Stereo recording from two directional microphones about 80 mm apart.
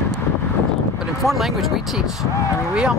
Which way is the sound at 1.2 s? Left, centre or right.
Centre.